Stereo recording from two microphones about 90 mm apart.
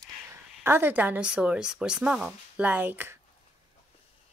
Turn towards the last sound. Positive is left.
turn(degrees=-20)  # may be behind; listen again after turning